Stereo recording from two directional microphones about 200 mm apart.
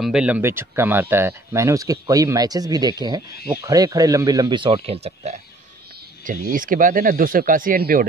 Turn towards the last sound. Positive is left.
turn(degrees=-45)  # may be behind; listen again after turning